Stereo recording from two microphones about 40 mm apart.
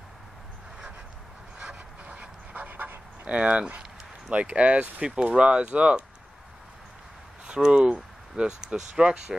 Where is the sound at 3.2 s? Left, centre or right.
Right.